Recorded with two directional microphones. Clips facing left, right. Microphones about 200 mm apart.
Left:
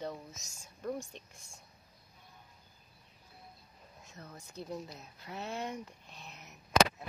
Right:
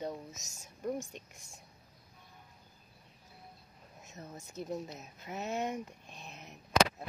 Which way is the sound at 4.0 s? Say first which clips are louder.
Right 3 dB; 25° right (ahead or behind).